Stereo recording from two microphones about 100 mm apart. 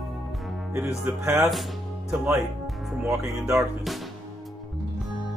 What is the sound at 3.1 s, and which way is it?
Speech, 30° right (ahead or behind).